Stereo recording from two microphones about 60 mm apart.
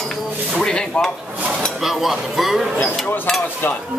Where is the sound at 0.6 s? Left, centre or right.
Centre.